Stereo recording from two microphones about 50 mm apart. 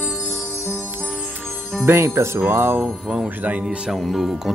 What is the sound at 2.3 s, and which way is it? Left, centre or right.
Jingle bell, right.